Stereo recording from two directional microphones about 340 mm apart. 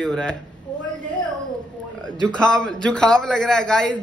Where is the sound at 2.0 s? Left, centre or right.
Centre.